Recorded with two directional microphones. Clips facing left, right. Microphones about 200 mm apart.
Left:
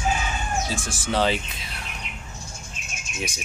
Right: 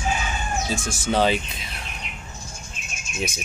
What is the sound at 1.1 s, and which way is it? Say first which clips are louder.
Speech: right 2 dB; 15° right (ahead or behind).